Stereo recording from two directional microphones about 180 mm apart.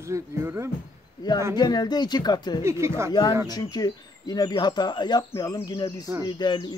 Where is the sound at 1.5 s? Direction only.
20° left (ahead or behind).